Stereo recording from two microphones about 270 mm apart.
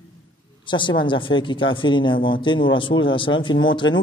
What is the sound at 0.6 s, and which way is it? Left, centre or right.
A woman's voice, centre.